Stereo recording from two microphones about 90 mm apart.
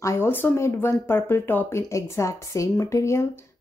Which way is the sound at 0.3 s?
20° left (ahead or behind).